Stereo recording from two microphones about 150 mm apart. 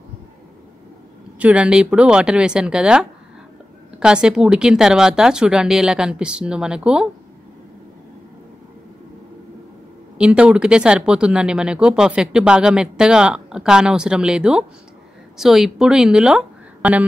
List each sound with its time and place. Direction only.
1.4 s speech: 10° right (ahead or behind)
10.1 s a woman's voice: 5° right (ahead or behind)